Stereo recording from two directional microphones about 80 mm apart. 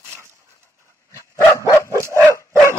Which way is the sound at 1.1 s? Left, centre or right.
Left.